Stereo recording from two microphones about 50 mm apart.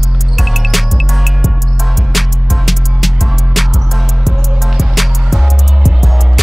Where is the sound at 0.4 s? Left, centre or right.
Centre.